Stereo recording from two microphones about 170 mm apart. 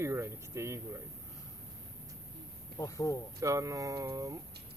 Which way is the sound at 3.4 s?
20° right (ahead or behind).